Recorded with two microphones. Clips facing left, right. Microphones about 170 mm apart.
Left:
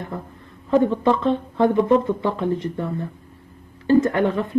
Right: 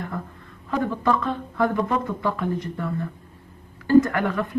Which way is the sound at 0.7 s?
25° left (ahead or behind).